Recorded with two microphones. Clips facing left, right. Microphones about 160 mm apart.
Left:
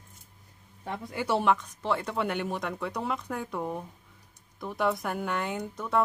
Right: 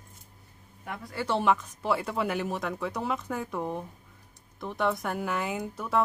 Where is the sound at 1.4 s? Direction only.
5° right (ahead or behind).